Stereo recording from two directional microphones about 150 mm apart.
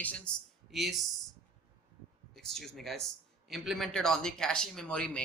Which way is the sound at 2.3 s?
Centre (ahead or behind).